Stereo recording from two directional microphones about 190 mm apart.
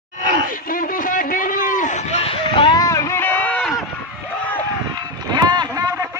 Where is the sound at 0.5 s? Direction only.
45° left (ahead or behind); by 3.8 s 10° left (ahead or behind).